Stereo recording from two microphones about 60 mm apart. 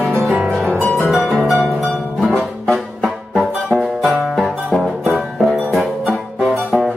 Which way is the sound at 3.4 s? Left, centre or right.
Centre.